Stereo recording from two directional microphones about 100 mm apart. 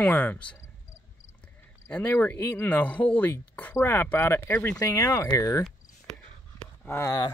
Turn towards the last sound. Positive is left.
turn(degrees=25)  # may be behind; listen again after turning